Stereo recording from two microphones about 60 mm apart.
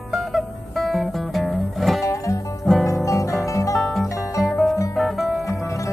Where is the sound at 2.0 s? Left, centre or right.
Left.